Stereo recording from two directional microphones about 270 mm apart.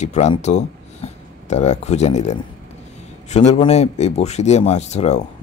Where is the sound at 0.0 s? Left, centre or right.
Left.